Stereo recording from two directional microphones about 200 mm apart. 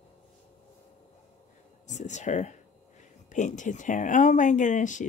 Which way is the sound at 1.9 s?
35° left (ahead or behind).